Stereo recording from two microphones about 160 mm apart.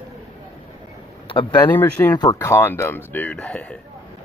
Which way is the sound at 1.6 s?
10° left (ahead or behind).